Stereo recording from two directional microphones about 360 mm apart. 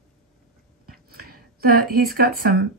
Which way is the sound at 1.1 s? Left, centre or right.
Right.